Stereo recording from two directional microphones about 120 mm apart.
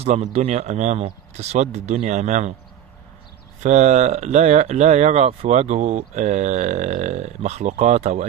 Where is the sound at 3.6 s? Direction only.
75° right (ahead or behind).